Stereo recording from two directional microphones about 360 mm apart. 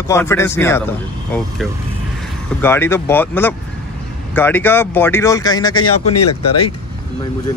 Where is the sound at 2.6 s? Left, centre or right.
Centre.